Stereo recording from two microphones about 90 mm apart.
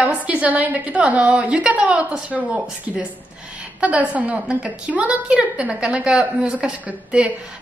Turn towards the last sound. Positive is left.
turn(degrees=-10)  # may be behind; listen again after turning